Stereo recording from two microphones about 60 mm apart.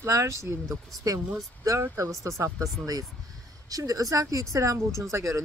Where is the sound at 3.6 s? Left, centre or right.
Right.